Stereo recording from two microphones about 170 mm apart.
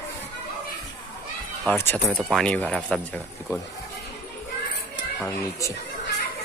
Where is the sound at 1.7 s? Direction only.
10° left (ahead or behind).